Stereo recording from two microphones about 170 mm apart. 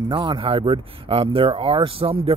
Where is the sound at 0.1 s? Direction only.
30° right (ahead or behind).